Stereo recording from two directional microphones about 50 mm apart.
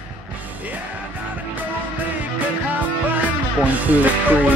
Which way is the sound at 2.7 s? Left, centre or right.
Right.